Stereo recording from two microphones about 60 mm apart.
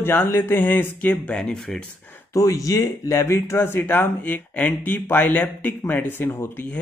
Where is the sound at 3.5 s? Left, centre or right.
Left.